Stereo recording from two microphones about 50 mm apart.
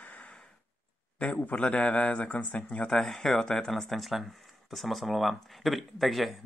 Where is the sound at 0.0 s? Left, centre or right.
Left.